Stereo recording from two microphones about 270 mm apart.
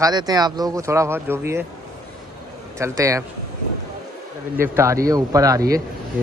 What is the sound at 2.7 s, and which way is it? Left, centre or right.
Speech, centre.